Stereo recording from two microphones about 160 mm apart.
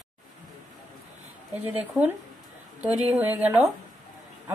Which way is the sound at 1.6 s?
10° right (ahead or behind).